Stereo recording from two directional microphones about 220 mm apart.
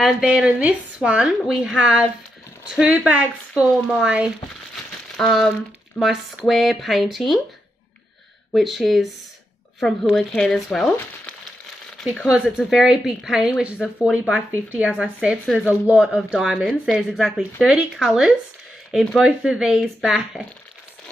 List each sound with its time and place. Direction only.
0.0 s speech: 5° right (ahead or behind)
8.5 s speech: centre (ahead or behind)
13.7 s speech: 10° left (ahead or behind)
14.1 s speech: 5° right (ahead or behind)